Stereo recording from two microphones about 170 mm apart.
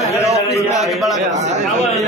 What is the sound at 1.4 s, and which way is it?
Speech, 40° right (ahead or behind).